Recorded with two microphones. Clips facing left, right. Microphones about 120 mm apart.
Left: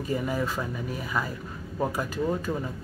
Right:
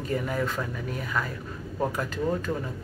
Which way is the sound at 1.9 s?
10° left (ahead or behind).